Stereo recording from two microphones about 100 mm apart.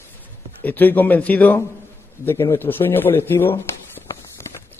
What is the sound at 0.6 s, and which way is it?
A man's voice, 20° left (ahead or behind).